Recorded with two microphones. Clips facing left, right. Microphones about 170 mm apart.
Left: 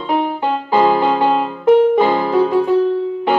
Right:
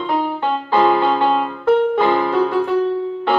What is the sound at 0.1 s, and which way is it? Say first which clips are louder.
Music: left 3 dB; 15° left (ahead or behind).